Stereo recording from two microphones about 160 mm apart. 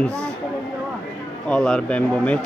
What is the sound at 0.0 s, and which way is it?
Speech, 5° left (ahead or behind).